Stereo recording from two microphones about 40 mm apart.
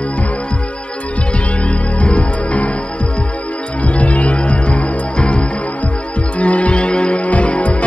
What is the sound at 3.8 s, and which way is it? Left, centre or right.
Music, left.